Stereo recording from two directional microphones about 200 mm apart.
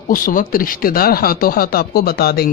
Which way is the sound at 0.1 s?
45° left (ahead or behind).